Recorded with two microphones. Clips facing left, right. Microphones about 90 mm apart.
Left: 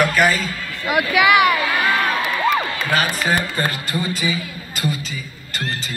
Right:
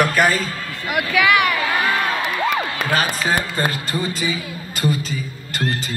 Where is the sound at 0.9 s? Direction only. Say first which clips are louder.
Left 2 dB; 10° left (ahead or behind).